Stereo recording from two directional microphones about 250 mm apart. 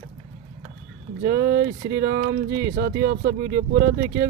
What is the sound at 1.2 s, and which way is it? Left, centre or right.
Speech, right.